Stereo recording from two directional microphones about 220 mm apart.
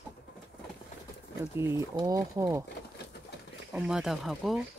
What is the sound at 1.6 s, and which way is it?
Speech, 10° right (ahead or behind).